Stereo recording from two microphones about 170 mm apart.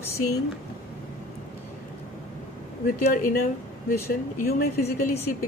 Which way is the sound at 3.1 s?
55° left (ahead or behind).